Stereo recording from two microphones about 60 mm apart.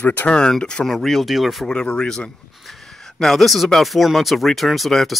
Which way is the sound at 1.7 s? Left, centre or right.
Centre.